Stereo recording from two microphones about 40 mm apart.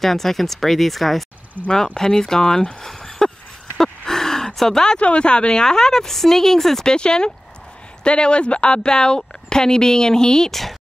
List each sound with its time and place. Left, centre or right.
0.0 s speech: centre
1.6 s speech: right
2.0 s a woman's voice: centre
3.2 s a sound: centre
4.6 s a woman's voice: centre
4.9 s a woman's voice: left